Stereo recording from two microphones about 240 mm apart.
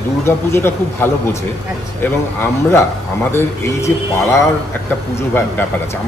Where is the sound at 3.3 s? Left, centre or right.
Centre.